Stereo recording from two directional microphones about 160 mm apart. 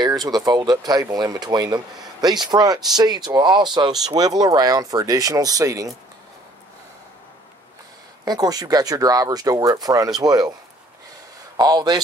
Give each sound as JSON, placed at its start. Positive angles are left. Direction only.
{"t": 0.0, "sound": "speech", "side_deg": -25}
{"t": 8.3, "sound": "speech", "side_deg": -25}
{"t": 11.5, "sound": "speech", "side_deg": -25}